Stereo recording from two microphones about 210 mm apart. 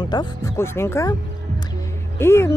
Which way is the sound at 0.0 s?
20° left (ahead or behind).